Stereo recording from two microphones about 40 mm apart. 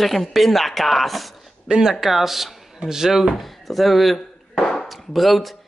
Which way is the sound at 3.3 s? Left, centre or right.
Centre.